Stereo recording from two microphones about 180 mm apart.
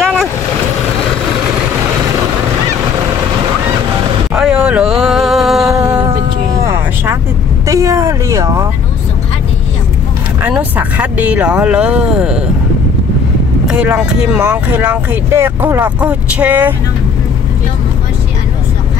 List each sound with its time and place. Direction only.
0.0 s boat: centre (ahead or behind)
4.4 s a sound: 5° right (ahead or behind)
6.6 s vehicle: 15° right (ahead or behind)
10.4 s speech: 10° right (ahead or behind)
13.7 s speech: 5° right (ahead or behind)